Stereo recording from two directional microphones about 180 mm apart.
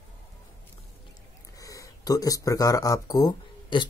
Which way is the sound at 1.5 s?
20° left (ahead or behind).